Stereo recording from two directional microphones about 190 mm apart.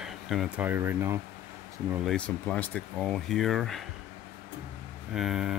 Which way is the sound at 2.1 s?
5° left (ahead or behind).